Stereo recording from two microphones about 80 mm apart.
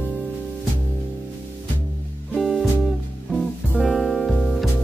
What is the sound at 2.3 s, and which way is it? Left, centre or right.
Music, centre.